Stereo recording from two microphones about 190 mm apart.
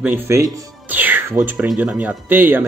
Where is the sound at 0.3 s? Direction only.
10° right (ahead or behind).